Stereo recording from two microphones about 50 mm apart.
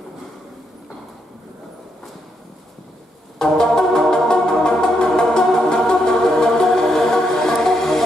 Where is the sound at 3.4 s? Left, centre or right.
Centre.